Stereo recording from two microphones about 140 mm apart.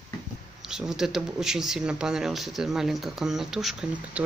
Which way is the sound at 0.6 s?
5° right (ahead or behind).